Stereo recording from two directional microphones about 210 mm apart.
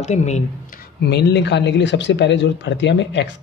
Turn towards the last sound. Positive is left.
turn(degrees=60)  # may be behind; listen again after turning